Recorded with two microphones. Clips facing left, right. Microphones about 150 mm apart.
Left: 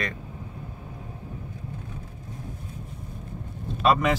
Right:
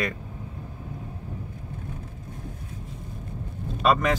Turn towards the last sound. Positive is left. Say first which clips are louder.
# even
turn(degrees=0)  # may be behind; listen again after turning